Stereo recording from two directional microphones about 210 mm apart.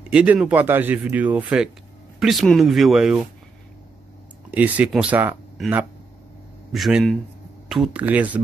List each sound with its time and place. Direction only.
0.0 s speech: 5° right (ahead or behind)
4.5 s speech: 5° right (ahead or behind)